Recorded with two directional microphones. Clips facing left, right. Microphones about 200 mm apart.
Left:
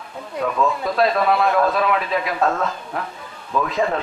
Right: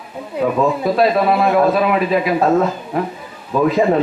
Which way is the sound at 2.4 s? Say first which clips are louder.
Right 7 dB; 15° right (ahead or behind).